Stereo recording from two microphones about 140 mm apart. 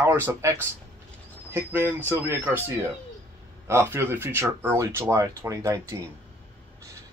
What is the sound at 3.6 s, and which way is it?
Speech, 20° right (ahead or behind).